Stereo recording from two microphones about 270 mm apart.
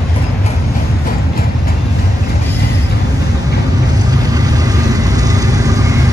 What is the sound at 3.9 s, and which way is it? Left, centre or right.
Vehicle, centre.